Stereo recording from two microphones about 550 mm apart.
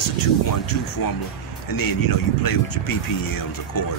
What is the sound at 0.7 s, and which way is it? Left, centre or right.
Speech, left.